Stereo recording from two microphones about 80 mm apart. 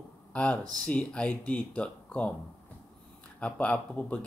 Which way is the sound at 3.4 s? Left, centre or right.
Centre.